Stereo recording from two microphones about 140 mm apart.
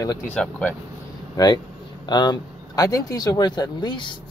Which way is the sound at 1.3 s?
30° left (ahead or behind).